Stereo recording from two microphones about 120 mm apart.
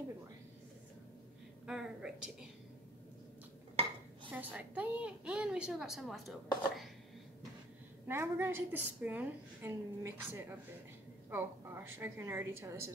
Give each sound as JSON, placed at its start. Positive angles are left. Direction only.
{"t": 1.7, "sound": "a sound", "side_deg": -5}
{"t": 4.3, "sound": "a woman's voice", "side_deg": -15}
{"t": 8.1, "sound": "a woman's voice", "side_deg": -20}